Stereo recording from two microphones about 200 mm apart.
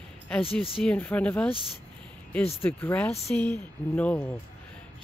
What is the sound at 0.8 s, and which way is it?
Speech, 5° left (ahead or behind).